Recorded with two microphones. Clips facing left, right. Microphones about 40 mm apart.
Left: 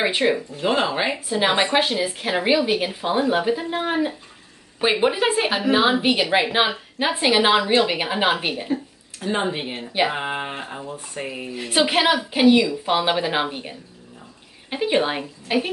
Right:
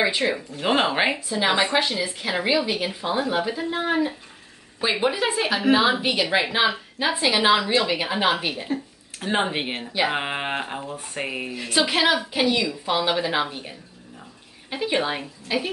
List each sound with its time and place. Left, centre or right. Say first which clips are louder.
0.0 s a woman's voice: left 2 dB; left
0.6 s speech: even; right
1.3 s a woman's voice: left 4 dB; left
9.2 s speech: even; right
11.5 s speech: left 3 dB; left